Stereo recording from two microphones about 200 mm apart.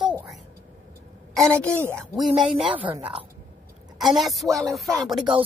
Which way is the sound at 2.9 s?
25° right (ahead or behind).